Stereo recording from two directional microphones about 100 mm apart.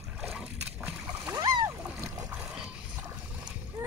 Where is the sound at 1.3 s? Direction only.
45° right (ahead or behind).